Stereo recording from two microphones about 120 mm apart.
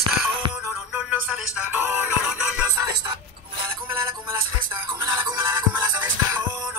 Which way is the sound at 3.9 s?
25° right (ahead or behind).